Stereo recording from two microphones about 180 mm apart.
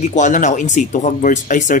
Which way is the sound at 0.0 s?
40° left (ahead or behind).